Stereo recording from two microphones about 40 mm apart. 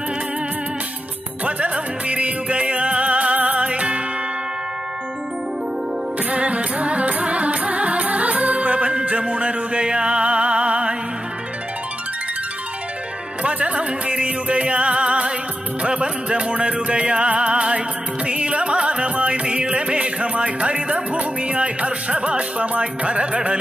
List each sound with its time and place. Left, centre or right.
1.4 s music: right
6.3 s music: right
13.4 s music: right